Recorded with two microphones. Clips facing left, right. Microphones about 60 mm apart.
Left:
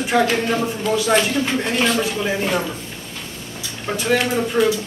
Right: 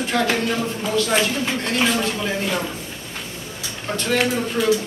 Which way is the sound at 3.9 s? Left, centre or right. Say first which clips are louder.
Left 3 dB; centre.